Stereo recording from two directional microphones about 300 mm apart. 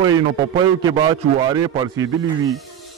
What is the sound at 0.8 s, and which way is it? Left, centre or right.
A man's voice, centre.